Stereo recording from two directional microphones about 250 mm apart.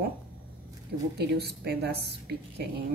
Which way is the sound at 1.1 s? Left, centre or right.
Right.